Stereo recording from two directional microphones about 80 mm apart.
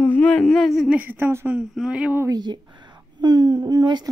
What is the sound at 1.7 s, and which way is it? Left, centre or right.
Speech, centre.